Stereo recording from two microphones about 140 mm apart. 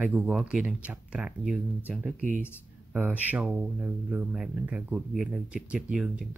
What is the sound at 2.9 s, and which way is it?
Speech, 10° right (ahead or behind).